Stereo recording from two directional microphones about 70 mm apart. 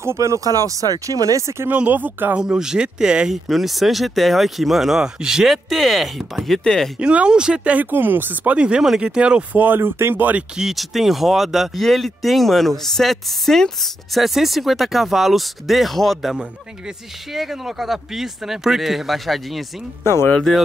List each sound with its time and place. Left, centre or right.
0.0 s speech: right
1.7 s speech: right
2.3 s speech: centre
3.4 s speech: centre
7.0 s speech: centre
7.7 s speech: right
8.5 s speech: centre
9.6 s speech: right
10.6 s speech: centre
20.2 s speech: centre